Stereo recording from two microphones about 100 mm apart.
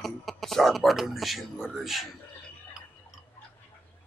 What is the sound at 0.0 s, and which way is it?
Speech, centre (ahead or behind).